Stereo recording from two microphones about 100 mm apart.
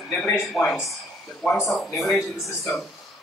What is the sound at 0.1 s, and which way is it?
Speech, 15° left (ahead or behind).